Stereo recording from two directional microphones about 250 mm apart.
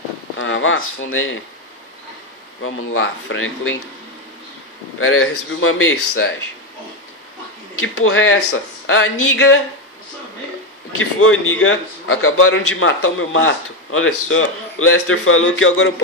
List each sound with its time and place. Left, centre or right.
0.4 s speech: left
2.6 s speech: left
4.9 s a man's voice: left
7.8 s a man's voice: left
11.0 s a man's voice: left